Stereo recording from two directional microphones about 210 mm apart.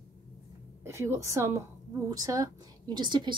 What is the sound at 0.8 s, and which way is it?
A woman's voice, 10° right (ahead or behind).